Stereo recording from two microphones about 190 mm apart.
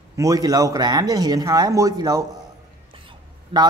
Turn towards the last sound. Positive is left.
turn(degrees=-25)  # may be behind; listen again after turning